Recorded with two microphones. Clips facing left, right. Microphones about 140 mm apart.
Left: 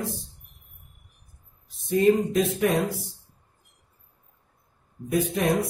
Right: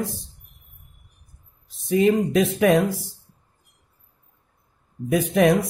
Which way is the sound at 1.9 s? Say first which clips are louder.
Right 2 dB; 85° right.